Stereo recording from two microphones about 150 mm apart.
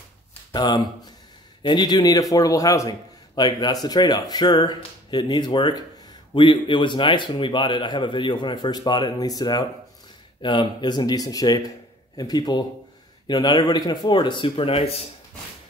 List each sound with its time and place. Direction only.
0.5 s a man's voice: 30° left (ahead or behind)